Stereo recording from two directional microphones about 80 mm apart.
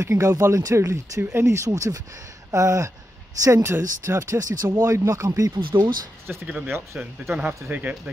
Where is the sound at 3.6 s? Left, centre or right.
Right.